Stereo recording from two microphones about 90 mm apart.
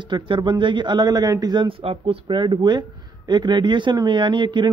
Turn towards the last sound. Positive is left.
turn(degrees=-60)  # may be behind; listen again after turning